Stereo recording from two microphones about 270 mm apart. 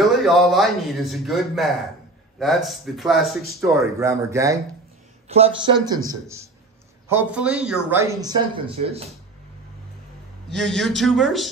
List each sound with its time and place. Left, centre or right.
0.0 s speech: centre
3.6 s speech: centre
10.5 s speech: centre